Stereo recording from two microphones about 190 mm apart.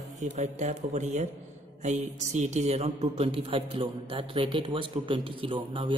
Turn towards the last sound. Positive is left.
turn(degrees=-25)  # may be behind; listen again after turning